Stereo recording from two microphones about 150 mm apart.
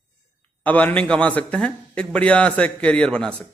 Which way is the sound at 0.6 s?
10° left (ahead or behind).